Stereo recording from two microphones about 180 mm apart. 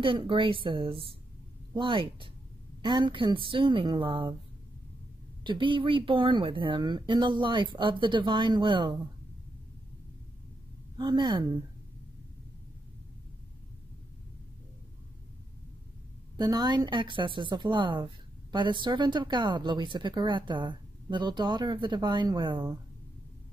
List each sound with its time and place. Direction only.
0.0 s a woman's voice: 30° right (ahead or behind)
5.4 s a woman's voice: 25° right (ahead or behind)
11.0 s a woman's voice: 25° right (ahead or behind)
16.3 s a woman's voice: 20° right (ahead or behind)